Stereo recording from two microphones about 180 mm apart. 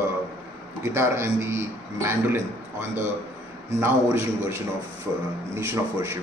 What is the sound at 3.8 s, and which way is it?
A man's voice, 15° right (ahead or behind).